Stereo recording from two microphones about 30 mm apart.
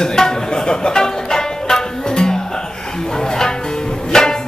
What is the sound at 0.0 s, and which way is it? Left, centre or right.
Music, centre.